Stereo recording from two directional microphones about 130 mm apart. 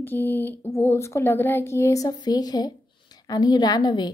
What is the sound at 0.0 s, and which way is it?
A woman's voice, 15° left (ahead or behind).